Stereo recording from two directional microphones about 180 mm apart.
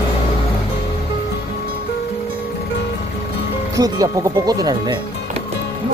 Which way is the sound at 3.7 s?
20° right (ahead or behind).